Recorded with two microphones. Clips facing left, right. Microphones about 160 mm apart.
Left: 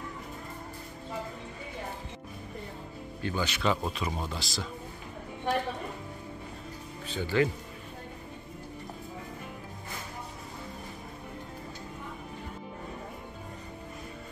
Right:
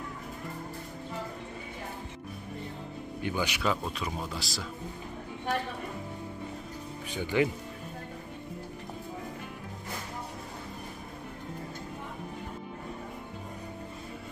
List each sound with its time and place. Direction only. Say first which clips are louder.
3.2 s a man's voice: even; 15° right (ahead or behind)
3.6 s speech: left 2 dB; centre (ahead or behind)
7.1 s speech: even; 15° right (ahead or behind)